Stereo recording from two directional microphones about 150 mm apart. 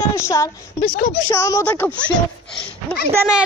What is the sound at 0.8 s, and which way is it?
Speech, 60° left (ahead or behind).